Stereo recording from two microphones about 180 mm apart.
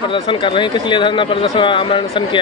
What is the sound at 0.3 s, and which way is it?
Speech, 25° left (ahead or behind).